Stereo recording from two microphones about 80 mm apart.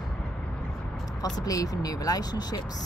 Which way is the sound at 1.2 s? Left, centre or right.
Left.